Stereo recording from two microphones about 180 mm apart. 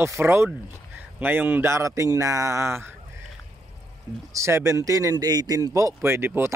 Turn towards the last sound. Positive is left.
turn(degrees=-15)  # may be behind; listen again after turning